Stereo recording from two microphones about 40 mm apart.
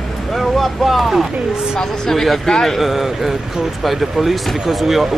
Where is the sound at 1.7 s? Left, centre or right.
Centre.